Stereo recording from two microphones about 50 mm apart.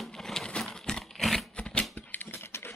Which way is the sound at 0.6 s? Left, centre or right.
Centre.